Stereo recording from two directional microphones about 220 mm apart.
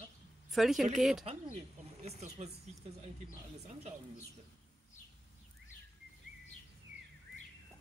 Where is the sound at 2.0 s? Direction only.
30° right (ahead or behind).